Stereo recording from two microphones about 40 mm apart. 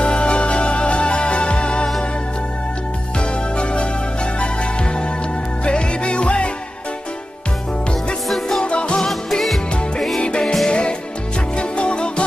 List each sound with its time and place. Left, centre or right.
0.0 s music: left
3.2 s music: left
5.7 s music: left
8.3 s music: centre
8.6 s music: left
10.4 s music: centre
10.7 s music: left